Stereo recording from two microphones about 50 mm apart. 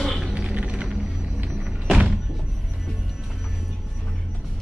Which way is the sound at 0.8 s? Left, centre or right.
Centre.